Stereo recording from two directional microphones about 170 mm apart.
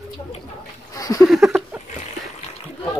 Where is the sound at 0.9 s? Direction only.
20° left (ahead or behind).